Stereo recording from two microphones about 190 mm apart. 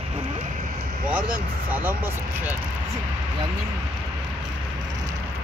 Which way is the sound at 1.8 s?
10° right (ahead or behind).